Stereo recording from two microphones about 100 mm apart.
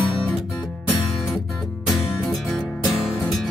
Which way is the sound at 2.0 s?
Centre (ahead or behind).